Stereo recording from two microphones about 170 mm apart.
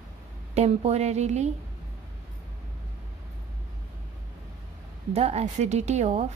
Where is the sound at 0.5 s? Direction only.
40° right (ahead or behind).